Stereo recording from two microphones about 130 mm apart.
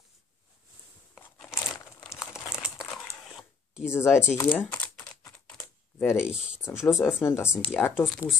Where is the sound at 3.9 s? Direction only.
20° left (ahead or behind).